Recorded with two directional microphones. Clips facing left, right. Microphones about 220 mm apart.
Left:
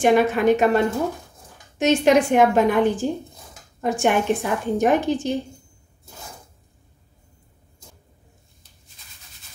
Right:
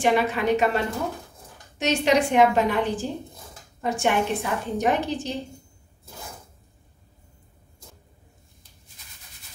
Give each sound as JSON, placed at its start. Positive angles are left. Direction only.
{"t": 0.0, "sound": "a woman's voice", "side_deg": 50}